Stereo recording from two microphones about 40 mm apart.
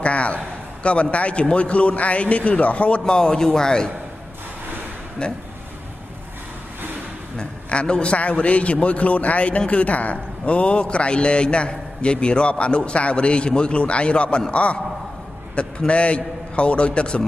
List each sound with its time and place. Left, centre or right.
0.0 s a sound: left
1.1 s a man's voice: left
5.2 s a man's voice: left
7.3 s a man's voice: left